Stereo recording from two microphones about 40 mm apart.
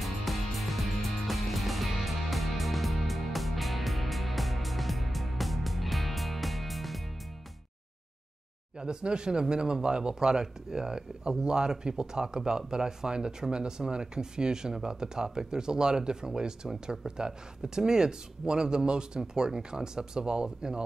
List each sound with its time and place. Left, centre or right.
0.0 s music: centre
8.7 s speech: right